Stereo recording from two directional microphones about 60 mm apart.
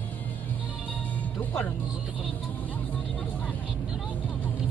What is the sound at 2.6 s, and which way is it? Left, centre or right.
Vehicle, left.